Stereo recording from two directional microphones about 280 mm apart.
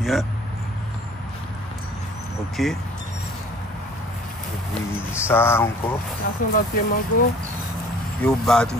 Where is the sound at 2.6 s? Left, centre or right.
Centre.